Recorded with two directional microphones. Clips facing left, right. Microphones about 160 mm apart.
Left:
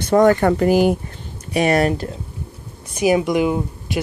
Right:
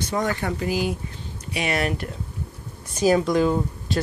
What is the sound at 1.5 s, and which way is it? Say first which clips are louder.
Speech: left 8 dB; 45° left (ahead or behind).